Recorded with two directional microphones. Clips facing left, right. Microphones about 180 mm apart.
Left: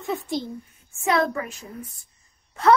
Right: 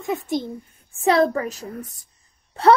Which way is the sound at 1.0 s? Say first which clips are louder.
Right 5 dB; 35° right (ahead or behind).